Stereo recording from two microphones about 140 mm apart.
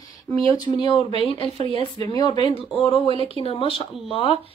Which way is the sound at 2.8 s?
40° left (ahead or behind).